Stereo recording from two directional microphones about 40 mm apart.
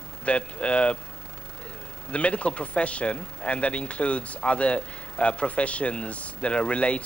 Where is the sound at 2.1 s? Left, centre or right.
Left.